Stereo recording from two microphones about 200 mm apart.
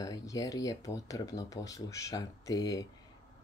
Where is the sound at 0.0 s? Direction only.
15° left (ahead or behind).